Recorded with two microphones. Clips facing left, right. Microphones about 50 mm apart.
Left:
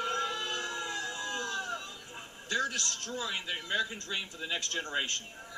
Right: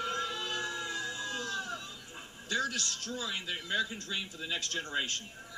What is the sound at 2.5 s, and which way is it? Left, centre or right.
A man's voice, centre.